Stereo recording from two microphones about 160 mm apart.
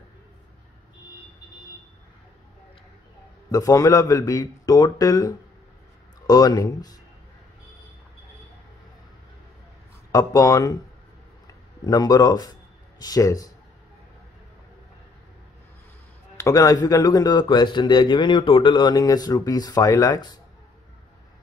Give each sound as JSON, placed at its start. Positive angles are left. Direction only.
{"t": 3.5, "sound": "speech", "side_deg": 20}
{"t": 10.1, "sound": "speech", "side_deg": 20}
{"t": 11.8, "sound": "speech", "side_deg": 25}
{"t": 16.3, "sound": "speech", "side_deg": 20}